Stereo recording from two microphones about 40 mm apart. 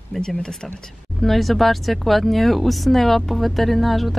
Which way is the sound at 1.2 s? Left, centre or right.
Centre.